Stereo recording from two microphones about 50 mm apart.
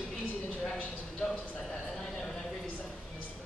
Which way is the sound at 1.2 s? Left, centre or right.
Centre.